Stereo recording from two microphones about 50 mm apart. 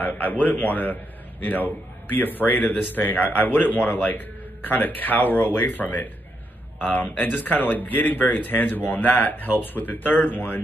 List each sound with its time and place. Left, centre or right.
0.0 s a man's voice: left